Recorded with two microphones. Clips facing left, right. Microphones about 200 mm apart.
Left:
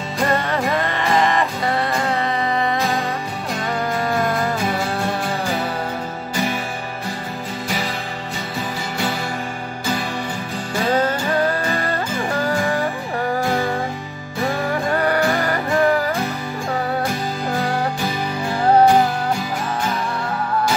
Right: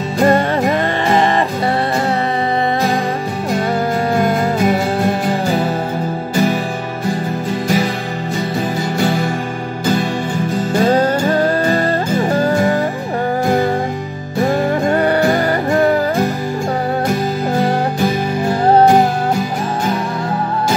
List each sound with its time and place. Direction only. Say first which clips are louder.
0.2 s music: right 7 dB; 30° right (ahead or behind)
11.0 s music: right 5 dB; 30° right (ahead or behind)
14.4 s music: right 6 dB; 30° right (ahead or behind)
18.0 s music: right 7 dB; 50° right (ahead or behind)